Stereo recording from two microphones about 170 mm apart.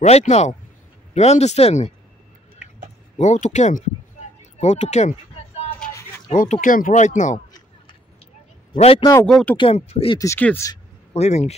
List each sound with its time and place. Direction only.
0.0 s speech: 40° left (ahead or behind)
3.2 s speech: 45° left (ahead or behind)
5.7 s a sound: 15° left (ahead or behind)
6.2 s speech: 45° left (ahead or behind)
8.7 s speech: 35° left (ahead or behind)
9.2 s speech: 5° left (ahead or behind)
9.6 s speech: 35° left (ahead or behind)
10.1 s speech: 15° left (ahead or behind)
11.1 s speech: 40° left (ahead or behind)